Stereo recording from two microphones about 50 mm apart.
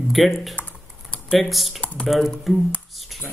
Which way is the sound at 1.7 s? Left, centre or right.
Left.